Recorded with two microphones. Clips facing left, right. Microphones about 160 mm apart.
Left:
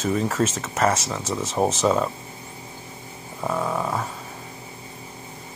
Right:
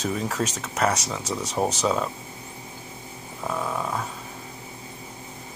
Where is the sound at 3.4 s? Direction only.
15° left (ahead or behind).